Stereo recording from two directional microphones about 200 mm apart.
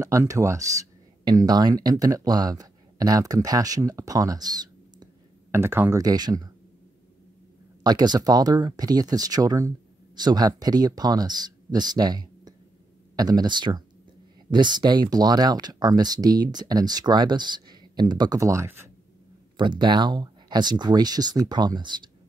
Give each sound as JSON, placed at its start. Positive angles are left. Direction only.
{"t": 0.0, "sound": "speech", "side_deg": -15}
{"t": 7.8, "sound": "speech", "side_deg": -20}
{"t": 19.5, "sound": "speech", "side_deg": -25}